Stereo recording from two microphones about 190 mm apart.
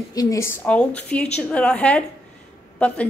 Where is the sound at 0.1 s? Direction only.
20° left (ahead or behind).